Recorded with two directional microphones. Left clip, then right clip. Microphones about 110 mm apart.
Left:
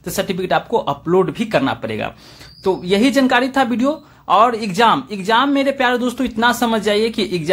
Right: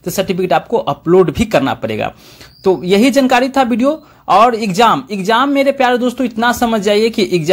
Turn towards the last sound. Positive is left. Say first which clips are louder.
# right 5 dB
turn(degrees=-35)  # may be behind; listen again after turning